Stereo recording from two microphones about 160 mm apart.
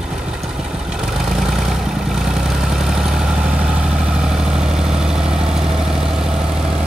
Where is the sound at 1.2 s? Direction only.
5° right (ahead or behind).